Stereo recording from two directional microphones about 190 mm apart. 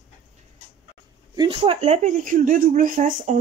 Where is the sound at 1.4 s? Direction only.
30° right (ahead or behind).